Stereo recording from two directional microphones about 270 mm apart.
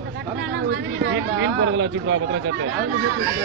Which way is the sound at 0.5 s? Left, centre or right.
Right.